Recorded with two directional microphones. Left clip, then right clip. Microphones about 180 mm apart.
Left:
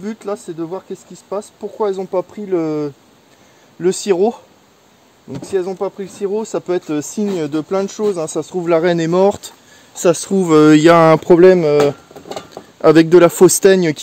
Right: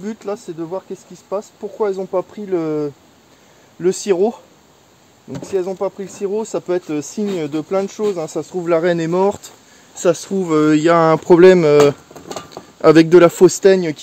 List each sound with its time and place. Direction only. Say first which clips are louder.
0.0 s speech: left 1 dB; 25° left (ahead or behind)
5.4 s speech: left 1 dB; 30° left (ahead or behind)
9.9 s speech: left 2 dB; 50° left (ahead or behind)
11.8 s a sound: right 2 dB; 50° right (ahead or behind)
12.8 s speech: even; centre (ahead or behind)
13.5 s speech: left 2 dB; 60° left (ahead or behind)